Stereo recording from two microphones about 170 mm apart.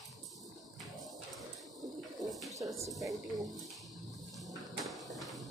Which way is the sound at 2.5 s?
20° right (ahead or behind).